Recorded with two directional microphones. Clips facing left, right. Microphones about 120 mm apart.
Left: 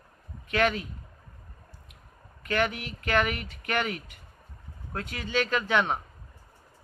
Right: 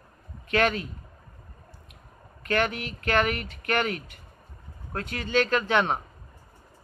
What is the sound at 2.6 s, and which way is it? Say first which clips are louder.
Speech: right 1 dB; 5° left (ahead or behind).